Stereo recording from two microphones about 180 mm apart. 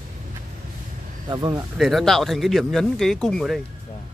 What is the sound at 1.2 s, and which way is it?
Speech, 20° right (ahead or behind).